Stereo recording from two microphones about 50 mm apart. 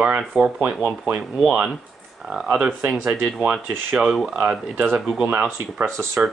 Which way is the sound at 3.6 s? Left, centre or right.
Right.